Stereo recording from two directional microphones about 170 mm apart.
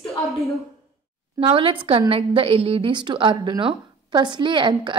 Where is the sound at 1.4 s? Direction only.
30° right (ahead or behind).